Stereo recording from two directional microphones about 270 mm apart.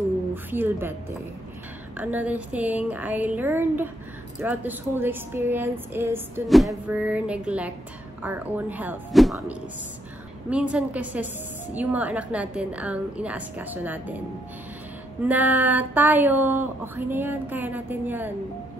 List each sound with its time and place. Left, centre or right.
0.3 s speech: centre
2.0 s a woman's voice: centre
15.2 s speech: centre